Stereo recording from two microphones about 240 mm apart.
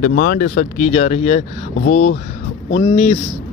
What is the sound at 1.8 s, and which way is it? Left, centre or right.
Speech, left.